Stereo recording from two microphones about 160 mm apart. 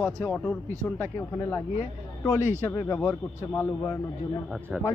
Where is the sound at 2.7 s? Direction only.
20° left (ahead or behind).